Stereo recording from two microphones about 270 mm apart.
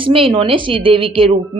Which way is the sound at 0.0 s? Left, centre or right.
Centre.